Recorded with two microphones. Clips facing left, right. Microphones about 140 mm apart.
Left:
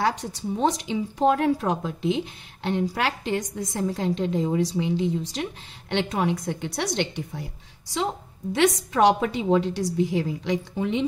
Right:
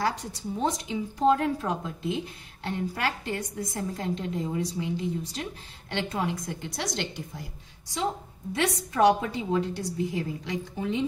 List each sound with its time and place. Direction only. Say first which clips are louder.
0.0 s a woman's voice: left 4 dB; 75° left (ahead or behind)
8.5 s a woman's voice: left 5 dB; 90° left; by 11.1 s 75° left (ahead or behind)